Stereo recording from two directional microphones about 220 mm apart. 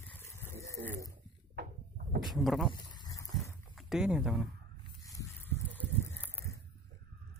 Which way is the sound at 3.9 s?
Centre (ahead or behind).